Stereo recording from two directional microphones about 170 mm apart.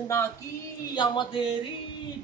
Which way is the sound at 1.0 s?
30° left (ahead or behind).